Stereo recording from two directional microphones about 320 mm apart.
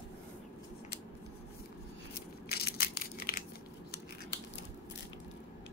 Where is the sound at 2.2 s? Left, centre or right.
Left.